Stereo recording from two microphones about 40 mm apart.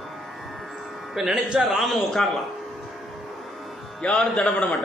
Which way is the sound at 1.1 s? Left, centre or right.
Centre.